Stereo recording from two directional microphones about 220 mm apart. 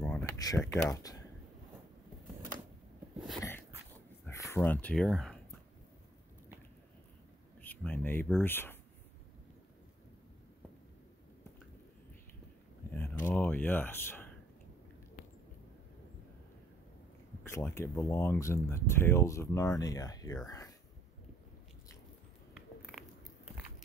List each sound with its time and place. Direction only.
0.0 s a sound: 10° left (ahead or behind)
0.6 s speech: 5° left (ahead or behind)
4.5 s speech: 10° left (ahead or behind)
7.6 s speech: 10° left (ahead or behind)
12.9 s speech: 10° left (ahead or behind)
17.4 s speech: 10° left (ahead or behind)
22.8 s biting: centre (ahead or behind)